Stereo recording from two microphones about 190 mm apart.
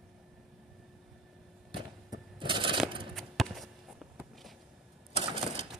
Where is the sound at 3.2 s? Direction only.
Centre (ahead or behind).